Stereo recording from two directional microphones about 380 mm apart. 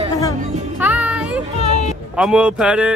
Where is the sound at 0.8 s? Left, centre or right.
Centre.